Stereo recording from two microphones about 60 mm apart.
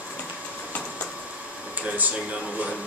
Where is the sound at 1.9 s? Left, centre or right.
Right.